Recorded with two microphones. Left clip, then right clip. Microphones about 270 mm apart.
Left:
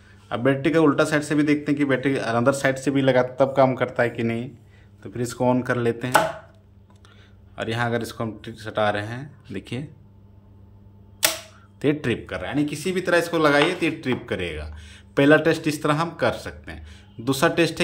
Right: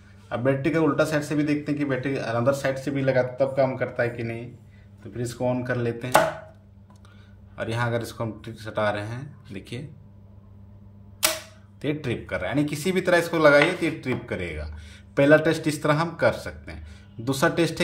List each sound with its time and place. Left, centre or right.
0.3 s a man's voice: centre
7.5 s a man's voice: centre
11.8 s speech: centre